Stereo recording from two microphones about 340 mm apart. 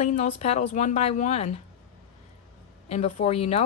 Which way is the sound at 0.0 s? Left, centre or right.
Centre.